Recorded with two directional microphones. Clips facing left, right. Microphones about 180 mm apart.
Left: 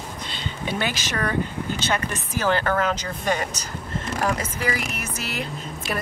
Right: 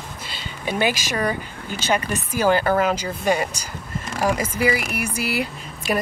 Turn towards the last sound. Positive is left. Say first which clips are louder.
# right 4 dB
turn(degrees=-10)  # may be behind; listen again after turning